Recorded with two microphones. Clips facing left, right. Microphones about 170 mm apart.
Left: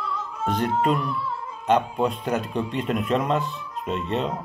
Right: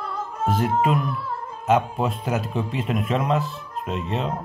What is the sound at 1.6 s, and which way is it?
Speech, 5° right (ahead or behind).